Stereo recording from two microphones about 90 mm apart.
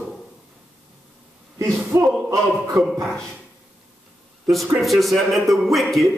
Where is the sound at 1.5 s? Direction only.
35° right (ahead or behind).